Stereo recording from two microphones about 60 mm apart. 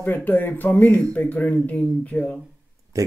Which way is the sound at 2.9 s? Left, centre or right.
Right.